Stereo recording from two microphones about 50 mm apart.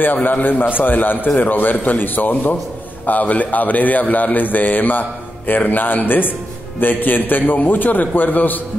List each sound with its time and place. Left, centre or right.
0.0 s a man's voice: left